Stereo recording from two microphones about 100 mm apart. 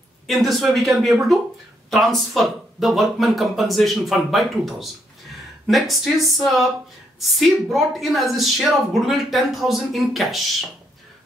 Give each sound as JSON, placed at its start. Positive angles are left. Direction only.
{"t": 0.3, "sound": "a woman's voice", "side_deg": 0}